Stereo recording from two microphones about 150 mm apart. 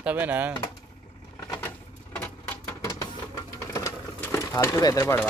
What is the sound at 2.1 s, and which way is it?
Sewing machine, 10° left (ahead or behind).